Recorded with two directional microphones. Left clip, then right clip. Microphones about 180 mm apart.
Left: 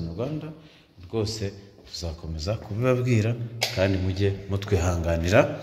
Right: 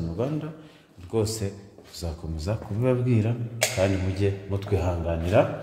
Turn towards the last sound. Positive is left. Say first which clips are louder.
# left 1 dB
turn(degrees=10)  # may be behind; listen again after turning